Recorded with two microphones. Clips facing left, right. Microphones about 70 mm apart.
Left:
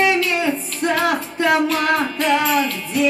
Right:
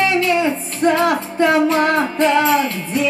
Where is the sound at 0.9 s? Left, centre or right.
Right.